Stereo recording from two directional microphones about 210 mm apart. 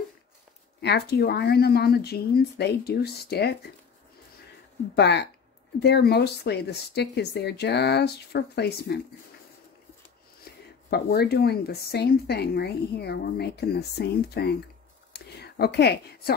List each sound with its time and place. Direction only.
0.7 s speech: 50° left (ahead or behind)
4.9 s speech: 55° left (ahead or behind)
10.4 s speech: 50° left (ahead or behind)
15.1 s whispering: 50° left (ahead or behind)